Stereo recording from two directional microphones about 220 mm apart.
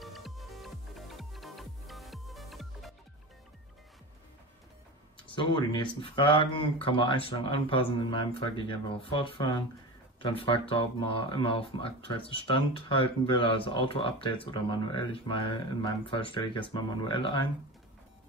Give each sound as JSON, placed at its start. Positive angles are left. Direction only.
{"t": 0.0, "sound": "music", "side_deg": 0}
{"t": 5.3, "sound": "speech", "side_deg": 20}